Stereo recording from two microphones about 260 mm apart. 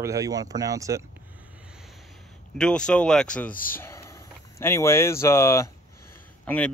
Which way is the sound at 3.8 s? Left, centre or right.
Centre.